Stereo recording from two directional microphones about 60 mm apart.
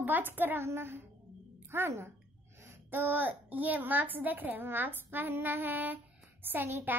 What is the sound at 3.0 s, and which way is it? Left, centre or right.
A child's voice, right.